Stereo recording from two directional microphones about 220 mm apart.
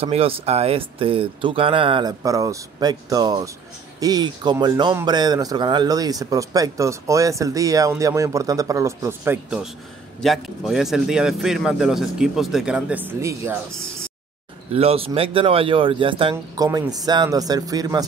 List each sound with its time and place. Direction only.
0.0 s speech: 25° right (ahead or behind)
14.7 s speech: 25° right (ahead or behind)